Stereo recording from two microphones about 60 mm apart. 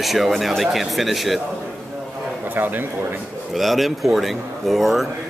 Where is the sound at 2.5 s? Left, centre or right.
Right.